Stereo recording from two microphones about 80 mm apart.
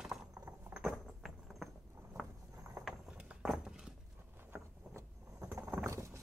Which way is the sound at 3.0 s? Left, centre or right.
Centre.